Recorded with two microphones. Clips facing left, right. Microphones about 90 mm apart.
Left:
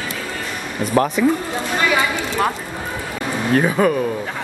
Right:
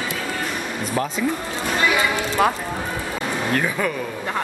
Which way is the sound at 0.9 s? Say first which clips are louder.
Left 8 dB; 75° left (ahead or behind).